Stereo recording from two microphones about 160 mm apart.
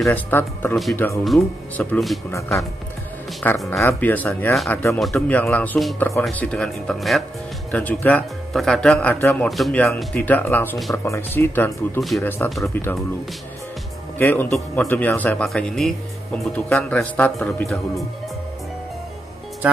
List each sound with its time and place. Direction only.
0.0 s speech: 10° left (ahead or behind)
1.2 s speech: 5° left (ahead or behind)
3.4 s speech: 10° left (ahead or behind)
5.9 s speech: 15° left (ahead or behind)
14.1 s speech: 10° left (ahead or behind)